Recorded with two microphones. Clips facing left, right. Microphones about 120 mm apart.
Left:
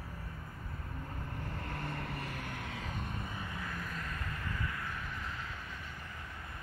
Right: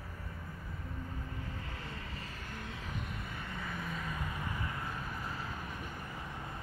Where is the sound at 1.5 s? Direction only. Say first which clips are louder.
Left 4 dB; 60° left (ahead or behind).